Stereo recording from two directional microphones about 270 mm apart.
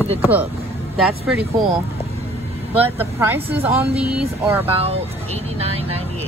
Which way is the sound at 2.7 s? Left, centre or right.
Centre.